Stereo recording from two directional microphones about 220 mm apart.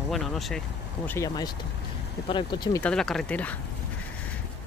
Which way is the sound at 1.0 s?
15° left (ahead or behind).